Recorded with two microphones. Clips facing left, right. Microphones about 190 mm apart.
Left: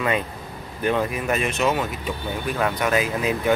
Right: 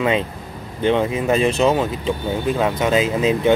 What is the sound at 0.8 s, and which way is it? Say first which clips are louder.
Speech: right 5 dB; 25° right (ahead or behind).